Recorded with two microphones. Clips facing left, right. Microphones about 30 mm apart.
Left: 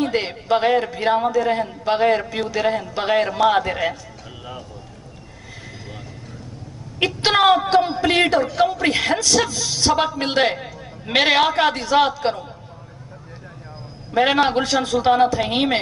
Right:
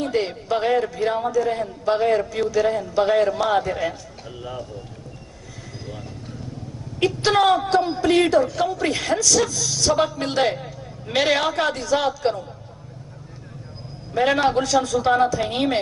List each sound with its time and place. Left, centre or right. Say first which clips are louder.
0.0 s a man's voice: left 1 dB; left
4.4 s speech: right 3 dB; centre
7.0 s a man's voice: left 1 dB; left
14.1 s a man's voice: left 2 dB; left